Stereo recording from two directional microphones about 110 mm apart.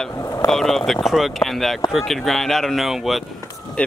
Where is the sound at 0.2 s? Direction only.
30° left (ahead or behind).